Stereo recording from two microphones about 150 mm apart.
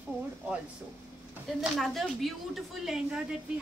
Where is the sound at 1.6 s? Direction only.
Centre (ahead or behind).